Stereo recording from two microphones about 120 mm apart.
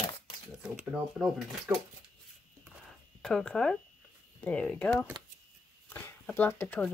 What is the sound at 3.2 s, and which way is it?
Speech, 5° left (ahead or behind).